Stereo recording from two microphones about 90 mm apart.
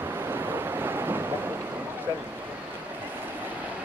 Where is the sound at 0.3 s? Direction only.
25° right (ahead or behind).